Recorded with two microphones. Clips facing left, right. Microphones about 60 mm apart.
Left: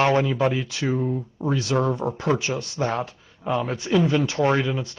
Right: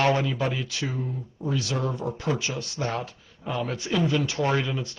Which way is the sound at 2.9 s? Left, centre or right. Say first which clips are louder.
Left 4 dB; centre.